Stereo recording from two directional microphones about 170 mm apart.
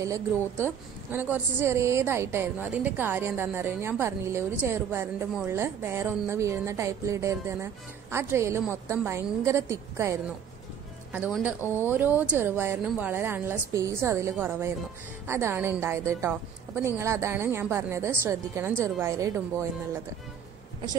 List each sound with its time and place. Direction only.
0.0 s a woman's voice: 15° right (ahead or behind)
11.6 s speech: 15° left (ahead or behind)
11.9 s a woman's voice: 10° right (ahead or behind)